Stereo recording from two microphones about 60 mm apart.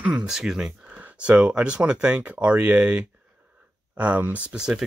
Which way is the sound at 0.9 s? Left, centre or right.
Centre.